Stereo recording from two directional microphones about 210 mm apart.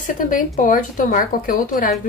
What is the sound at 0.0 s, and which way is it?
Speech, 40° left (ahead or behind).